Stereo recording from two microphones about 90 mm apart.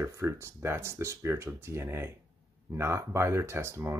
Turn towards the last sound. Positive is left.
turn(degrees=-30)  # may be behind; listen again after turning